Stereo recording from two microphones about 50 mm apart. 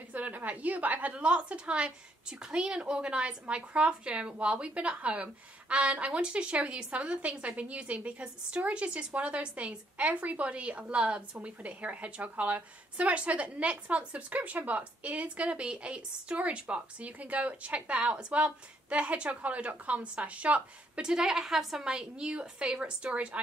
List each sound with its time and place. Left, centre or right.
0.1 s a woman's voice: right
21.2 s a woman's voice: centre; by 23.4 s right